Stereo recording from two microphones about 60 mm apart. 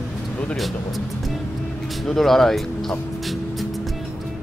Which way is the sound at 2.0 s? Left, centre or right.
Centre.